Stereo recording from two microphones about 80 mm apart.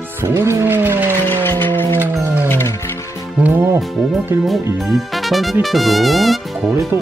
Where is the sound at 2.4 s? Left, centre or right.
Left.